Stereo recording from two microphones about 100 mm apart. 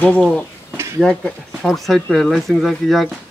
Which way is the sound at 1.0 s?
5° left (ahead or behind).